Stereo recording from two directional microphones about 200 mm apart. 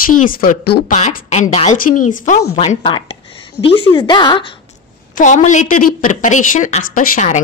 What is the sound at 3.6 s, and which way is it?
Speech, 25° left (ahead or behind).